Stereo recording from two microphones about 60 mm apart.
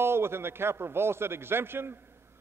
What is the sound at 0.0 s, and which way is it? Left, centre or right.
A man's voice, right.